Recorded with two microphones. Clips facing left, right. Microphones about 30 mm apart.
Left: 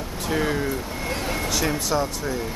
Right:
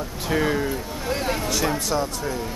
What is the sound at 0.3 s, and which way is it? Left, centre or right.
Speech, centre.